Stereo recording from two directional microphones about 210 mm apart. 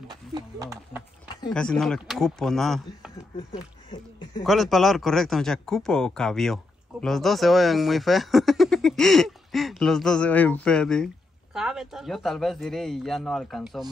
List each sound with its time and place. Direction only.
0.1 s speech: 20° right (ahead or behind)
1.5 s speech: 5° left (ahead or behind)
3.5 s a sound: 20° left (ahead or behind)
4.5 s speech: centre (ahead or behind)